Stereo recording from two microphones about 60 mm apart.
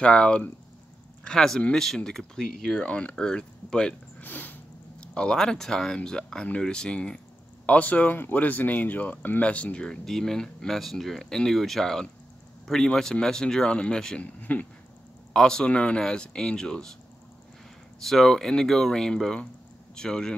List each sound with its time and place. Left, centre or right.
0.0 s speech: centre
4.2 s a sound: left
5.0 s speech: centre
9.8 s speech: centre
14.2 s speech: left
15.3 s speech: centre
18.0 s speech: centre